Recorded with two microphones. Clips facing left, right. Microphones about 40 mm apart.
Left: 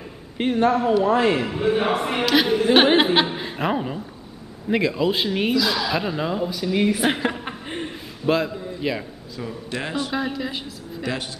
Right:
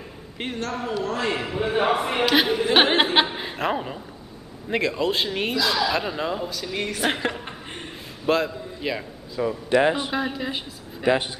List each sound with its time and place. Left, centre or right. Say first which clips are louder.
0.4 s a man's voice: left 10 dB; centre
1.0 s speech: left 6 dB; centre
1.3 s speech: left 3 dB; centre
7.4 s a sound: left 5 dB; centre
9.4 s a woman's voice: right 10 dB; centre